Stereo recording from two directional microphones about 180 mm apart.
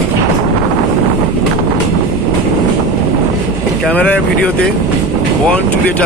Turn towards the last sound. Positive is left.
turn(degrees=5)  # may be behind; listen again after turning